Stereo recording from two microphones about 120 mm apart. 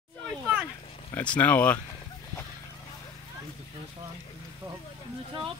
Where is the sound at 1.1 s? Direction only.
10° left (ahead or behind).